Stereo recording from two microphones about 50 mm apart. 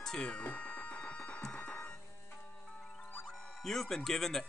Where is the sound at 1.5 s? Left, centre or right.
Left.